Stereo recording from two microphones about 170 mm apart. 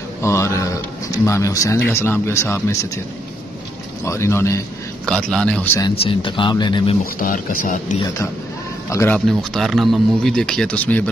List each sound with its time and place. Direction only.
0.2 s speech: 15° left (ahead or behind)
4.0 s speech: 15° left (ahead or behind)
5.0 s speech: 5° left (ahead or behind)
5.8 s speech: 25° left (ahead or behind)
7.2 s speech: 55° left (ahead or behind)
8.8 s a man's voice: 15° left (ahead or behind)
9.4 s speech: centre (ahead or behind)